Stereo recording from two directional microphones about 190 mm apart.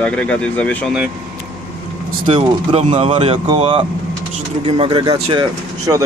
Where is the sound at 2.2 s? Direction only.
25° right (ahead or behind).